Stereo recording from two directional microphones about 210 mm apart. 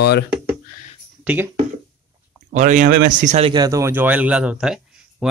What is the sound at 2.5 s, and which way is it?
Speech, 35° right (ahead or behind).